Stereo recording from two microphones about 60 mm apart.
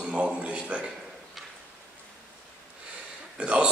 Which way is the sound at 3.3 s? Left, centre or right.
Centre.